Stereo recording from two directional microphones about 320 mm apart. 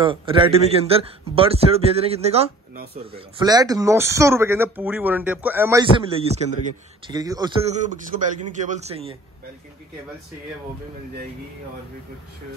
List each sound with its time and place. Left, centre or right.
0.0 s speech: centre
3.3 s speech: centre